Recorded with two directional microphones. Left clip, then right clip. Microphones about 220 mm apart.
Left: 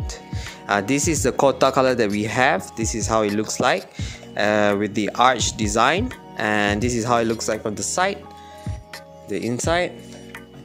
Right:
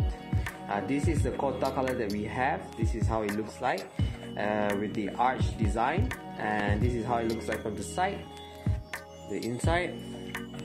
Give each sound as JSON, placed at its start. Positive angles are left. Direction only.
{"t": 0.7, "sound": "speech", "side_deg": 45}
{"t": 9.7, "sound": "speech", "side_deg": 35}